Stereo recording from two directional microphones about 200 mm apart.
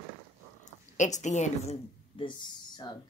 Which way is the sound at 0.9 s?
35° left (ahead or behind).